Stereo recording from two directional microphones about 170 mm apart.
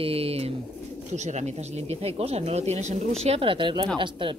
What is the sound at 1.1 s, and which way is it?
Speech, 40° right (ahead or behind).